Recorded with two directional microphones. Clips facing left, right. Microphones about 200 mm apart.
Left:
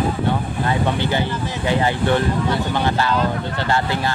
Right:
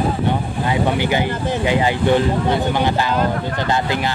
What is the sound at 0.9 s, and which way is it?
Speech, 15° right (ahead or behind).